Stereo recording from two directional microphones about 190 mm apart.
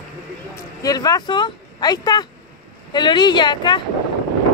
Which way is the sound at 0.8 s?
20° left (ahead or behind).